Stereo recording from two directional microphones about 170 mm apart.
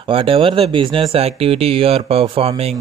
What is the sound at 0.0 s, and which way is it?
Speech, 30° right (ahead or behind).